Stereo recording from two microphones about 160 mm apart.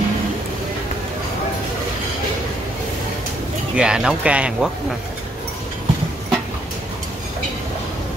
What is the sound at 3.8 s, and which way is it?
Speech, 5° right (ahead or behind).